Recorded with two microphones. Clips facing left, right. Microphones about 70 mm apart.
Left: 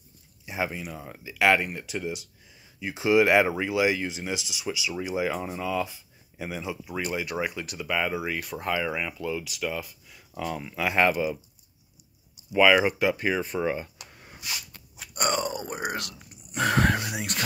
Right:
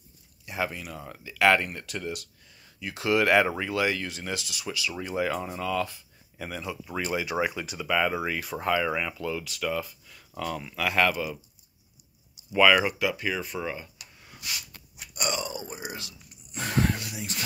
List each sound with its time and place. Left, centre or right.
0.5 s speech: centre
7.0 s speech: centre; by 11.3 s left
12.4 s speech: centre
12.7 s speech: left
14.1 s a sound: left